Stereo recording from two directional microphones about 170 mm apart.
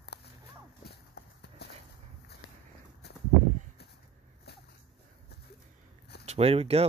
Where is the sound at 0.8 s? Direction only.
75° left (ahead or behind).